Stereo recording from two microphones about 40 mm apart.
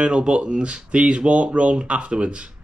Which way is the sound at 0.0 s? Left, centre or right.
Right.